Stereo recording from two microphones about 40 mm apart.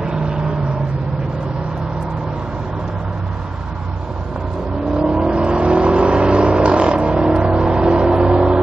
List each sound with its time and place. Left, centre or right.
4.9 s vehicle: centre